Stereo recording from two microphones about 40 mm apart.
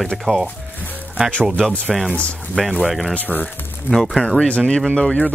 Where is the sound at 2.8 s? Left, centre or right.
Centre.